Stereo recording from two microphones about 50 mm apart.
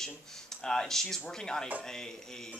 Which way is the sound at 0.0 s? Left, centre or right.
Centre.